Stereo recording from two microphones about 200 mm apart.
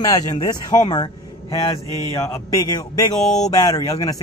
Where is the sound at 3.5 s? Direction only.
20° left (ahead or behind).